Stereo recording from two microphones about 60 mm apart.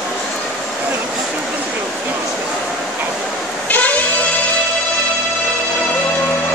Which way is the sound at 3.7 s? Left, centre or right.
Left.